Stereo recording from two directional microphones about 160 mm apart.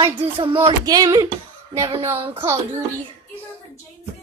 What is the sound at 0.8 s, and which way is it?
Speech, 25° right (ahead or behind).